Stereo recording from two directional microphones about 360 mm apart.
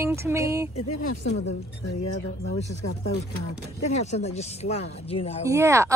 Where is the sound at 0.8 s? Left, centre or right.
Left.